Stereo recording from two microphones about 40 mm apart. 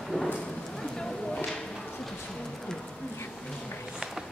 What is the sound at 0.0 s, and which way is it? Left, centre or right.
Clip-clop, centre.